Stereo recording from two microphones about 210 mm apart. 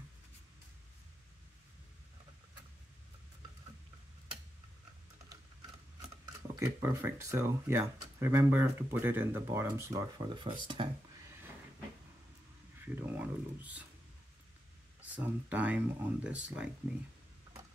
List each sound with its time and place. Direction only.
6.5 s speech: 15° right (ahead or behind)
12.8 s speech: 10° right (ahead or behind)
15.1 s speech: 5° right (ahead or behind)